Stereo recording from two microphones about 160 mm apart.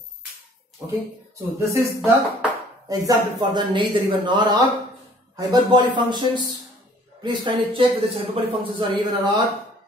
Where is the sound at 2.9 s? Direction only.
20° right (ahead or behind).